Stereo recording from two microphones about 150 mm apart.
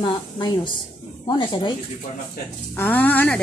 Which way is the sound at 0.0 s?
30° left (ahead or behind).